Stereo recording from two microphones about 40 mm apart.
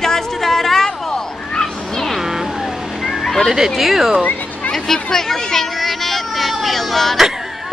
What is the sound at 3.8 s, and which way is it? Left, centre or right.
Speech, centre.